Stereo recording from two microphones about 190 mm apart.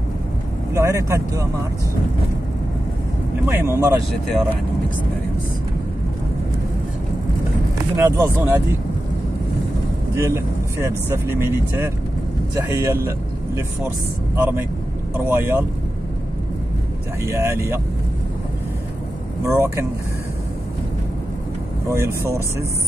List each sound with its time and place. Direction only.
0.7 s speech: 15° right (ahead or behind)
3.4 s speech: 15° right (ahead or behind)
7.9 s speech: 15° right (ahead or behind)
10.1 s speech: 15° right (ahead or behind)
17.2 s speech: 15° right (ahead or behind)
19.4 s speech: 15° right (ahead or behind)
21.8 s speech: 15° right (ahead or behind)